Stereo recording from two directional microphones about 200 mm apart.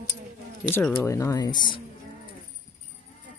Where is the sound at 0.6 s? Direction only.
10° left (ahead or behind).